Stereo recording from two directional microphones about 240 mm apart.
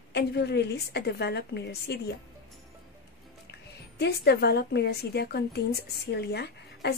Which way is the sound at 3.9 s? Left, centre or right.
Left.